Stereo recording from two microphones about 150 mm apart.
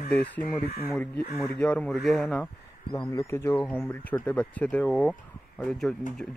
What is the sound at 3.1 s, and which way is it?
Speech, 20° left (ahead or behind).